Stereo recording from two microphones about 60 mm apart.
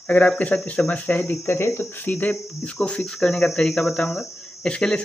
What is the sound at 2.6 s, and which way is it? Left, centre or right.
Speech, left.